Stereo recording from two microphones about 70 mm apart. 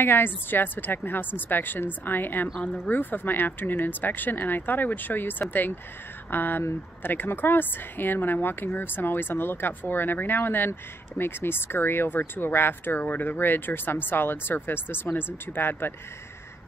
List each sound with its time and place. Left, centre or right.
0.0 s speech: left